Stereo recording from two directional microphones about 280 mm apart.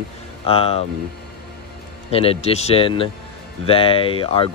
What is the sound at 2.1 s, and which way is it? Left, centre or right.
Speech, left.